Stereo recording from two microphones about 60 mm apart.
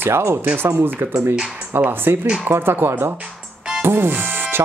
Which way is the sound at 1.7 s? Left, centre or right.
Right.